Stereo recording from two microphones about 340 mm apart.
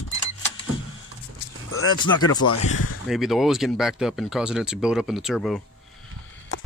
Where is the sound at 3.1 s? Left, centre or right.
Centre.